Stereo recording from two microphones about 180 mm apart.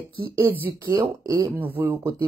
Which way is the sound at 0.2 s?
10° right (ahead or behind).